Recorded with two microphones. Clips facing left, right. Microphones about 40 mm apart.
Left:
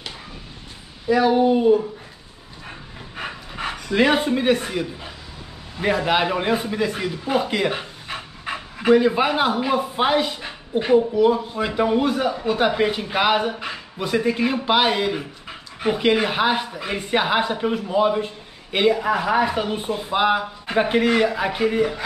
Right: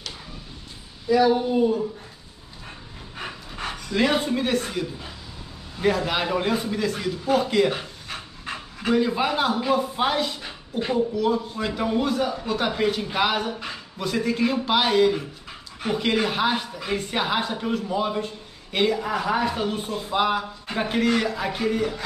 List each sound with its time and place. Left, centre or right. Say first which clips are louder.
1.0 s a man's voice: left 3 dB; left
3.2 s pant: left 3 dB; centre
5.8 s a man's voice: left 3 dB; left